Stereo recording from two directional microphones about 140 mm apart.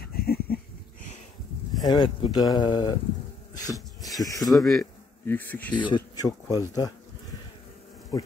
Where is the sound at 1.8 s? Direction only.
30° left (ahead or behind).